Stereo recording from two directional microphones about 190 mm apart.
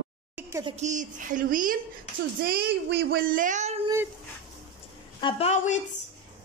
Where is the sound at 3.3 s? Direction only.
40° right (ahead or behind).